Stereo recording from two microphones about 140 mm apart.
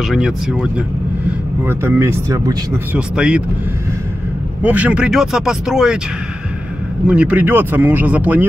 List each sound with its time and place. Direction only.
0.1 s speech: 5° right (ahead or behind)
1.7 s speech: 15° right (ahead or behind)
2.9 s speech: 10° right (ahead or behind)
4.6 s speech: 10° right (ahead or behind)
7.1 s speech: 10° right (ahead or behind)